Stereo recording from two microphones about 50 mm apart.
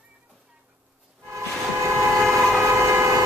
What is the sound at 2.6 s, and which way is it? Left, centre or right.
Train, right.